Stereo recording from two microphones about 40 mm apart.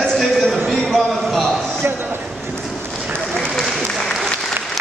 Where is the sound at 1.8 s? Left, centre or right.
Right.